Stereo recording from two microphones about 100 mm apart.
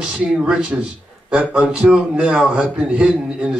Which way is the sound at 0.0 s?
5° right (ahead or behind).